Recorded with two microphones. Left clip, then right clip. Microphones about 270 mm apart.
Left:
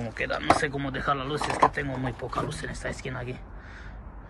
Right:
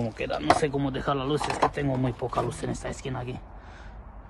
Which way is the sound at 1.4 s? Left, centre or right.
Centre.